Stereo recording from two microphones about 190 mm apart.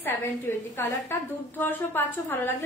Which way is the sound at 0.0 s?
15° left (ahead or behind).